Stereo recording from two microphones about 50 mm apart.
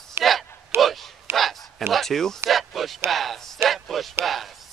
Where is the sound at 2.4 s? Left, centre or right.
Centre.